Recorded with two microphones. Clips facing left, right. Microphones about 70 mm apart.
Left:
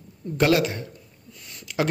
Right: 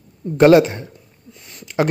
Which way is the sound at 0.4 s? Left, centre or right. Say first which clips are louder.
Right 10 dB; right.